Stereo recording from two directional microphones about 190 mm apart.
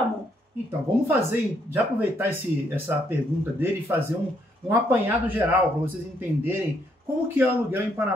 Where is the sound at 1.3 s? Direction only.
10° right (ahead or behind).